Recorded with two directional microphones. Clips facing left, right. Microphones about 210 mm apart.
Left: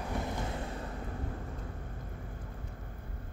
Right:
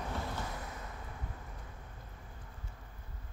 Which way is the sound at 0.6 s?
30° left (ahead or behind).